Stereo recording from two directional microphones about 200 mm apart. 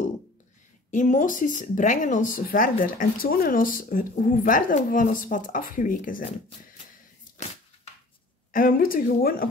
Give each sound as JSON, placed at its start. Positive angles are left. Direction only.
{"t": 0.9, "sound": "speech", "side_deg": 40}
{"t": 8.5, "sound": "speech", "side_deg": 45}